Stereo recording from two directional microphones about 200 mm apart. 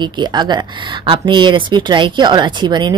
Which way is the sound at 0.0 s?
20° right (ahead or behind).